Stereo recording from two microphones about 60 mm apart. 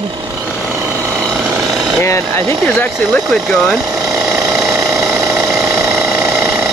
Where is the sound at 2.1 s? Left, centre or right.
Left.